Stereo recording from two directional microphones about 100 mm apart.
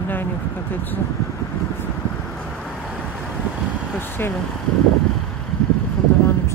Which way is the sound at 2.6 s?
Centre (ahead or behind).